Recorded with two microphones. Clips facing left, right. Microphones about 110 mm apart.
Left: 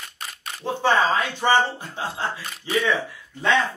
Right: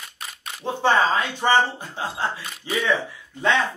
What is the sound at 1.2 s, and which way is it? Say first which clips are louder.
Speech: even; 20° right (ahead or behind).